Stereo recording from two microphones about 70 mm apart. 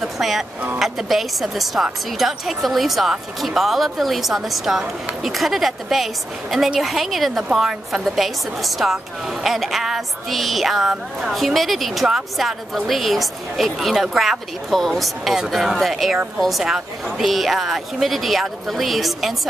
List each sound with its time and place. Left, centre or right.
0.0 s music: centre
0.7 s a woman's voice: centre